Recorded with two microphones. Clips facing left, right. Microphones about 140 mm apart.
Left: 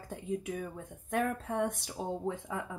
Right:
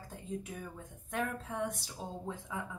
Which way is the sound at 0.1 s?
65° left (ahead or behind).